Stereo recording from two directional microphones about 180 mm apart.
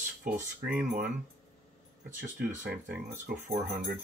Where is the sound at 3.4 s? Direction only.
50° right (ahead or behind).